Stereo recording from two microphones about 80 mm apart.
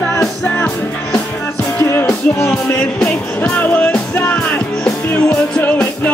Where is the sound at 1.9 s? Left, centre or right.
Left.